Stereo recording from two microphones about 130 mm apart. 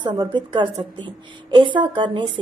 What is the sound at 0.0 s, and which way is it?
A woman's voice, 35° right (ahead or behind).